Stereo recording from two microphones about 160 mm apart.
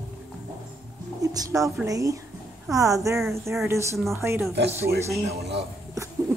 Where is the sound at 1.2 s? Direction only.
20° right (ahead or behind).